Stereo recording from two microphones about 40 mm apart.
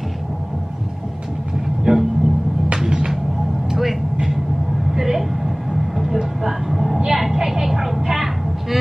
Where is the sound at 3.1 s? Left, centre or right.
Centre.